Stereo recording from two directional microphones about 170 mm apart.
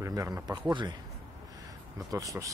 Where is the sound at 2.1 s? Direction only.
20° right (ahead or behind).